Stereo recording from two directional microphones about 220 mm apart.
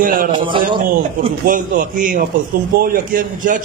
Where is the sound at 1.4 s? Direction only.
35° right (ahead or behind).